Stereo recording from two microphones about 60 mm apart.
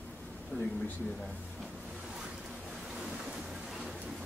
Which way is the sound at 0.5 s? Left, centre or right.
Left.